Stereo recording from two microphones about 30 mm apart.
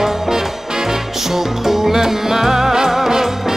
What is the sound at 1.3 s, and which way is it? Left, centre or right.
Music, centre.